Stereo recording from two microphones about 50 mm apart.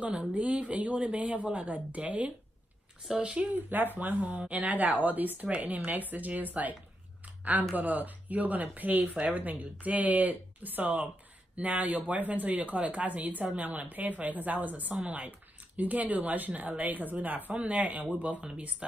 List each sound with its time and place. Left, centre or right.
0.3 s speech: right
3.5 s speech: right
7.7 s speech: right